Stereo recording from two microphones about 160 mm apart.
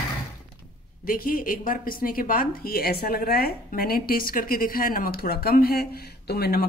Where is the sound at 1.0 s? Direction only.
60° left (ahead or behind); by 6.6 s 85° left.